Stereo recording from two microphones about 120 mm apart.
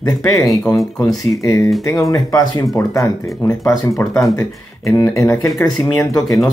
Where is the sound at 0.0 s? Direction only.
30° left (ahead or behind).